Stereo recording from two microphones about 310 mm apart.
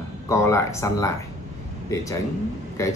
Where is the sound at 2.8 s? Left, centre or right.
Centre.